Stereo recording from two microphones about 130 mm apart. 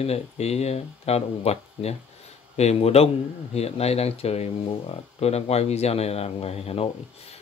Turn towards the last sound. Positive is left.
turn(degrees=50)  # may be behind; listen again after turning